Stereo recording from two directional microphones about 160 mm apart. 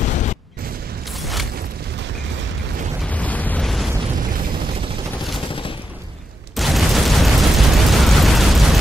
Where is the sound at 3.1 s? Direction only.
10° left (ahead or behind).